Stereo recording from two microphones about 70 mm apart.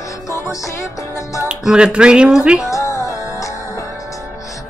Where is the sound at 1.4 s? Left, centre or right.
Centre.